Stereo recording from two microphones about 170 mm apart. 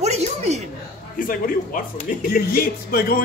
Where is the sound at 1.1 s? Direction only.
55° left (ahead or behind).